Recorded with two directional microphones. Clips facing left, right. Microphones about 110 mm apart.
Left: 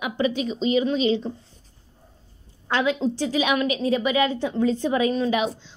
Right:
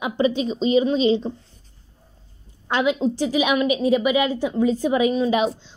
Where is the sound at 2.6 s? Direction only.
15° right (ahead or behind).